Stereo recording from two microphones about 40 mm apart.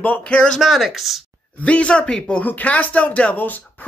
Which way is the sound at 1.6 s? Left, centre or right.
Left.